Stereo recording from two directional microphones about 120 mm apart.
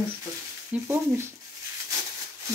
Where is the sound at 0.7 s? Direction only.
20° right (ahead or behind).